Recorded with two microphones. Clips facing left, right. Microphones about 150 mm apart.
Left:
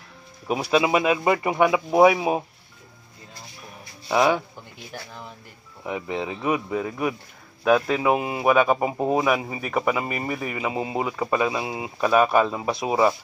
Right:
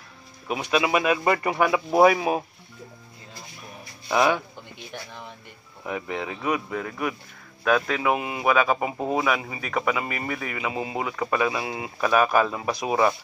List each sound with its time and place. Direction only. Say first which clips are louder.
0.5 s speech: left 3 dB; 35° left (ahead or behind); by 2.4 s 15° left (ahead or behind)
4.1 s speech: left 1 dB; 15° left (ahead or behind)
5.9 s speech: left 2 dB; 20° left (ahead or behind)
8.1 s speech: left 2 dB; 30° left (ahead or behind)
8.5 s speech: left 3 dB; 15° left (ahead or behind)